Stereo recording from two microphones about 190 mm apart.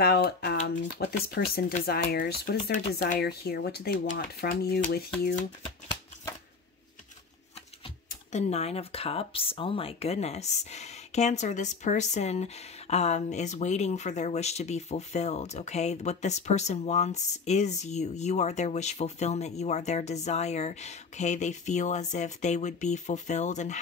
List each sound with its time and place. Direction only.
0.0 s speech: 55° left (ahead or behind)
8.3 s speech: 35° left (ahead or behind)